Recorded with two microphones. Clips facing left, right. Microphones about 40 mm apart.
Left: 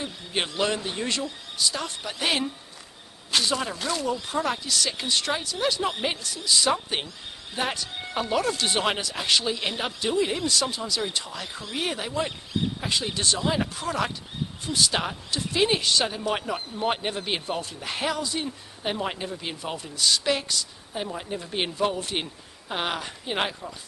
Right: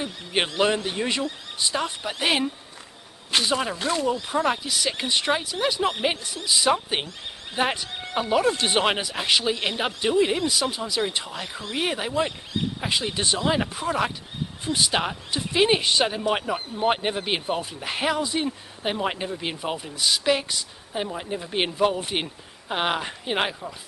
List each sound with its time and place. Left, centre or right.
0.0 s speech: right